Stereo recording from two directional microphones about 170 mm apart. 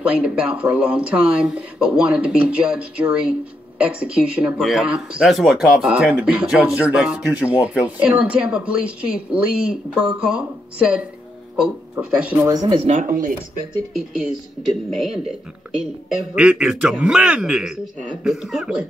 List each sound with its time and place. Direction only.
0.0 s speech: 5° right (ahead or behind)
12.4 s speech: 20° right (ahead or behind)
12.8 s speech: 50° right (ahead or behind)
14.9 s speech: centre (ahead or behind)